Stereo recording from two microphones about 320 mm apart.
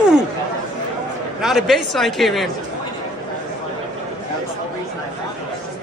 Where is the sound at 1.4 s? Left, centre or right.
Centre.